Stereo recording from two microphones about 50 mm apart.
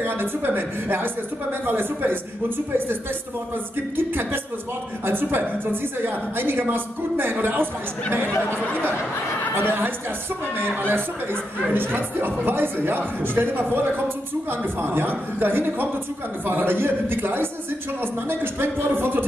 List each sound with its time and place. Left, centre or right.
0.0 s a woman's voice: right
3.9 s a woman's voice: right
9.6 s a woman's voice: right